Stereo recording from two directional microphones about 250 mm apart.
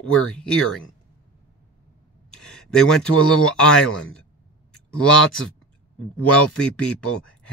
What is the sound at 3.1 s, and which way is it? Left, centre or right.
Speech, left.